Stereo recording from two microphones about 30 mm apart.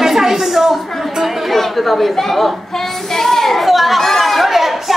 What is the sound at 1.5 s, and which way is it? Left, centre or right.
A woman's voice, centre.